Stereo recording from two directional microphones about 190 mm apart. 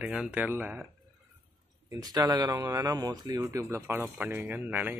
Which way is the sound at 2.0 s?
20° right (ahead or behind).